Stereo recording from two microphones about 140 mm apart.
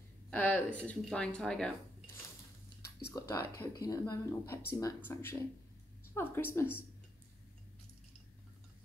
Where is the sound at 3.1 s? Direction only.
20° left (ahead or behind).